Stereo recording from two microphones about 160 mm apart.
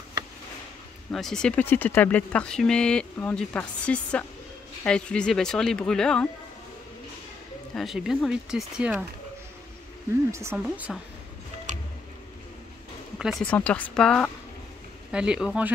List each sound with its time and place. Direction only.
1.1 s speech: 5° left (ahead or behind)
7.7 s speech: centre (ahead or behind)
10.3 s speech: 20° right (ahead or behind)
10.6 s speech: 5° right (ahead or behind)
13.2 s speech: 5° left (ahead or behind)
15.0 s speech: 5° right (ahead or behind)